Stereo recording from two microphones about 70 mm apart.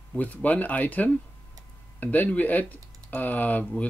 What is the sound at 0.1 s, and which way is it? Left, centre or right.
Speech, left.